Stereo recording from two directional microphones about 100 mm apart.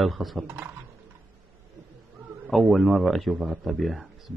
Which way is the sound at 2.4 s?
Centre (ahead or behind).